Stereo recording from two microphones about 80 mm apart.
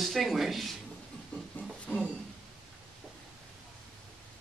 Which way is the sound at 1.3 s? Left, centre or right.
Centre.